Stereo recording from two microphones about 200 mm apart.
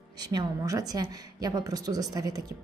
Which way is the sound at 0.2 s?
20° right (ahead or behind).